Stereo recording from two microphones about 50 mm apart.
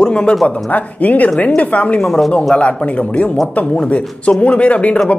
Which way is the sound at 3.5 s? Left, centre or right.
Left.